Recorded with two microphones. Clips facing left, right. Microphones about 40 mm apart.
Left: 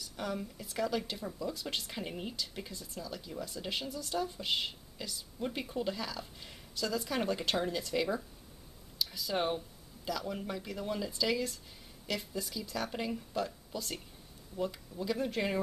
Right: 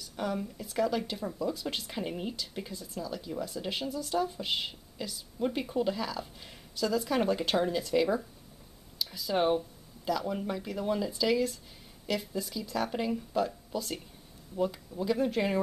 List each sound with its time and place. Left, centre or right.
0.0 s speech: centre